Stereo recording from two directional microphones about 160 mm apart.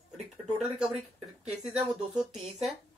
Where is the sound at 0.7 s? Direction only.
5° right (ahead or behind).